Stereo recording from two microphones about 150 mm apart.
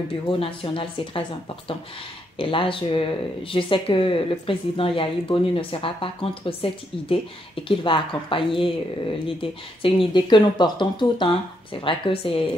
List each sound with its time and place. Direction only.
0.1 s speech: 35° left (ahead or behind)
2.3 s speech: 35° left (ahead or behind)